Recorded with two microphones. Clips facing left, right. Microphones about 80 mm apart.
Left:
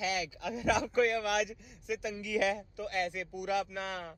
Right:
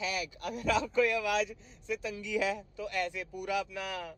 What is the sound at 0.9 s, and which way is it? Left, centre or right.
Speech, left.